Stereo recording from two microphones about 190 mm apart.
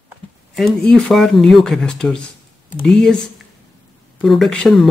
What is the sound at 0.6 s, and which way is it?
Speech, 5° left (ahead or behind).